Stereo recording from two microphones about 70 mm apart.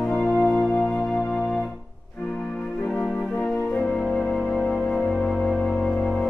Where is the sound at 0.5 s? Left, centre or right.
Centre.